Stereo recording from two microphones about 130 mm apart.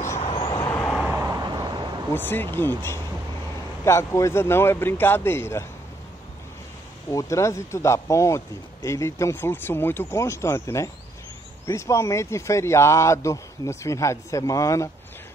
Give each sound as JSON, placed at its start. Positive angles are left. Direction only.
{"t": 0.2, "sound": "vehicle", "side_deg": 45}
{"t": 0.7, "sound": "vehicle", "side_deg": 15}
{"t": 1.0, "sound": "vehicle", "side_deg": -25}
{"t": 2.1, "sound": "speech", "side_deg": 15}
{"t": 7.1, "sound": "speech", "side_deg": 25}